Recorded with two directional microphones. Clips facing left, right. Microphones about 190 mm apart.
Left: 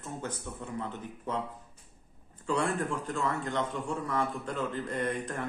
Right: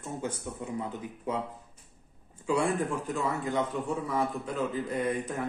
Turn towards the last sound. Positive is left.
turn(degrees=-5)  # may be behind; listen again after turning